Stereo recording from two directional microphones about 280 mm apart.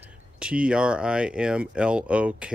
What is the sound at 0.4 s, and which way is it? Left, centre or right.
Speech, centre.